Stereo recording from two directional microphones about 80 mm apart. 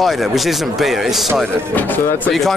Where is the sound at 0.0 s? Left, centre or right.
Centre.